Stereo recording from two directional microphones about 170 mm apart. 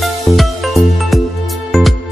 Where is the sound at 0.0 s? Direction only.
Centre (ahead or behind).